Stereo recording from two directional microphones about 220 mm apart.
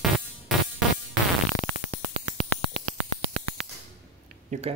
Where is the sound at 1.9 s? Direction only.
40° left (ahead or behind).